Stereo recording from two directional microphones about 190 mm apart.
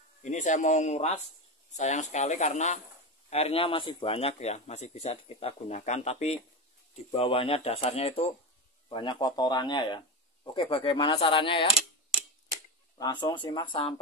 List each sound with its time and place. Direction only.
0.2 s a man's voice: 40° left (ahead or behind)
12.9 s speech: 25° left (ahead or behind)